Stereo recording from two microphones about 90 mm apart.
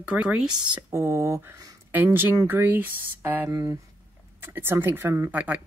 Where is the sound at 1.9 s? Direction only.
20° right (ahead or behind).